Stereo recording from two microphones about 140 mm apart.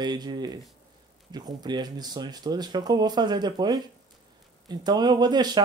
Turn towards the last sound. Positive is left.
turn(degrees=-30)  # may be behind; listen again after turning